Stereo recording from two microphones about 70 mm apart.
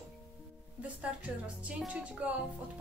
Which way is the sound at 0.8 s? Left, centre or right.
Centre.